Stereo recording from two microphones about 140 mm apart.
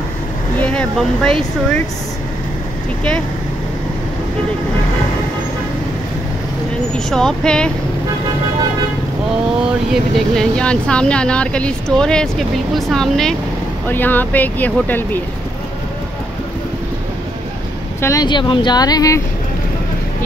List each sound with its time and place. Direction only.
0.6 s speech: 10° left (ahead or behind)
7.1 s speech: 5° left (ahead or behind)
10.1 s speech: 5° left (ahead or behind)
13.8 s speech: 15° left (ahead or behind)
18.0 s speech: 25° left (ahead or behind)